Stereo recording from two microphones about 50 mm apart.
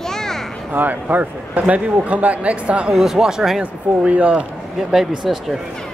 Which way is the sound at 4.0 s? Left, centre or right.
Right.